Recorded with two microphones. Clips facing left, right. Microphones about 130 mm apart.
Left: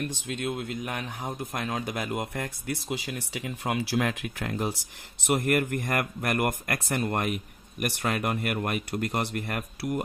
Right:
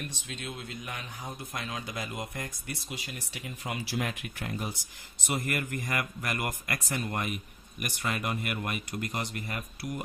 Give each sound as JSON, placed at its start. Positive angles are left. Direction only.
{"t": 0.0, "sound": "a man's voice", "side_deg": 55}
{"t": 5.2, "sound": "a man's voice", "side_deg": 60}